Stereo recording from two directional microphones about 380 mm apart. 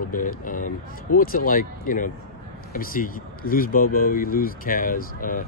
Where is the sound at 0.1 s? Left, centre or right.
Left.